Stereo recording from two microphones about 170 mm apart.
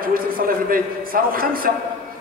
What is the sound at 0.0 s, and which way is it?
A man's voice, 55° right (ahead or behind).